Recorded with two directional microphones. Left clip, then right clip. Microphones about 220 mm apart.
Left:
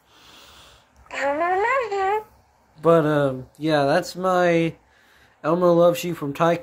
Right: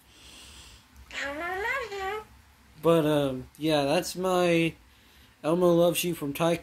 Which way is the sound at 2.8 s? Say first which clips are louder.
Left 6 dB; 5° right (ahead or behind).